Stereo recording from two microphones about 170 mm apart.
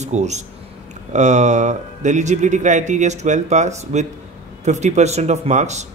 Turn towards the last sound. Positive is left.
turn(degrees=-40)  # may be behind; listen again after turning